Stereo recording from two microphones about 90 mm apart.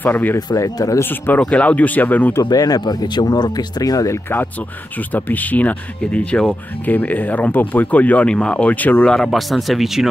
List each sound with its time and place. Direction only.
0.0 s speech: 20° left (ahead or behind)
0.6 s speech: 35° left (ahead or behind)
1.4 s speech: 15° left (ahead or behind)
2.5 s speech: 45° left (ahead or behind)
5.1 s speech: 20° left (ahead or behind)
9.1 s speech: 5° left (ahead or behind)